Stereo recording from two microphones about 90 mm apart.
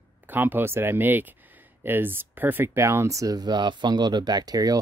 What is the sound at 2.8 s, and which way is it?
Speech, 35° right (ahead or behind).